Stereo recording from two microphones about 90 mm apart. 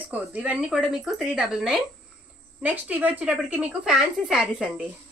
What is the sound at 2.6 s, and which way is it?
A woman's voice, 20° right (ahead or behind).